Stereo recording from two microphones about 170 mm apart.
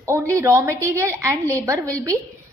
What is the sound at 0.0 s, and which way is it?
A woman's voice, 15° right (ahead or behind).